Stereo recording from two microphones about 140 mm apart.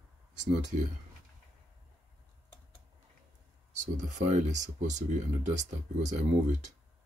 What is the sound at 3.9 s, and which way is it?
Speech, 55° right (ahead or behind).